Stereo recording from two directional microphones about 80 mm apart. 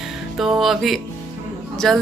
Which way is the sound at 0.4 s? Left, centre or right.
Centre.